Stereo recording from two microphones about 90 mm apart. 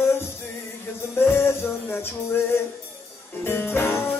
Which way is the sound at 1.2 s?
25° left (ahead or behind).